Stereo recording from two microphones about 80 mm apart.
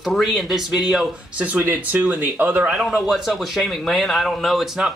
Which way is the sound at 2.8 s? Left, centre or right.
Centre.